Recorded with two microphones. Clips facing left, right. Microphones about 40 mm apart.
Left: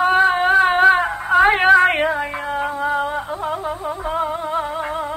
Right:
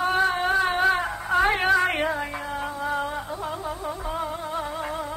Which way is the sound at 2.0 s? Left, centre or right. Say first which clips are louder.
Left 6 dB; left.